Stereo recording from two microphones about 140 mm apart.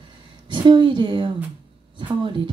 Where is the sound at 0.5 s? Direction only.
35° right (ahead or behind).